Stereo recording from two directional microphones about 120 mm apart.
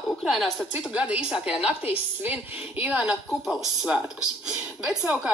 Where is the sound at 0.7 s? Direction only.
10° right (ahead or behind).